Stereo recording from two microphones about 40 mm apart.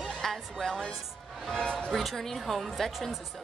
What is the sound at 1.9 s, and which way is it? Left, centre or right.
Speech, centre.